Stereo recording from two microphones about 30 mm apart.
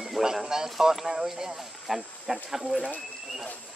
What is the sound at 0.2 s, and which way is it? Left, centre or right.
Speech, centre.